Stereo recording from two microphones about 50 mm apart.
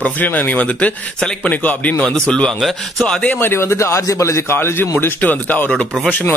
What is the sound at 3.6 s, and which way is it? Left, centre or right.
Speech, left.